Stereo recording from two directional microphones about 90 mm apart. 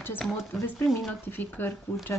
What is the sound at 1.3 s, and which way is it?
Speech, 20° left (ahead or behind).